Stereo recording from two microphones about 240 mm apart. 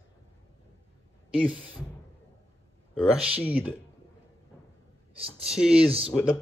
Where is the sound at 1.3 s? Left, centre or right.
Centre.